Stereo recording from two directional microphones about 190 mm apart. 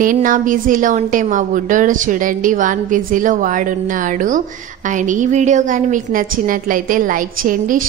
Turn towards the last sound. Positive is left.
turn(degrees=-45)  # may be behind; listen again after turning